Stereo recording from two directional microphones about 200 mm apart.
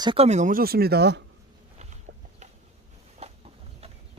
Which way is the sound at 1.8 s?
35° right (ahead or behind).